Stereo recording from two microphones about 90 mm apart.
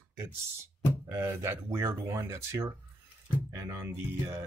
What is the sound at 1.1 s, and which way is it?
Speech, 30° right (ahead or behind).